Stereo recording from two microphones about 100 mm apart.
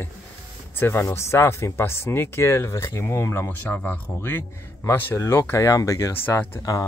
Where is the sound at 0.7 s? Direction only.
20° left (ahead or behind).